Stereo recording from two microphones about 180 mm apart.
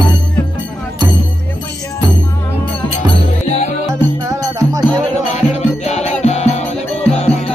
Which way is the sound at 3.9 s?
15° right (ahead or behind).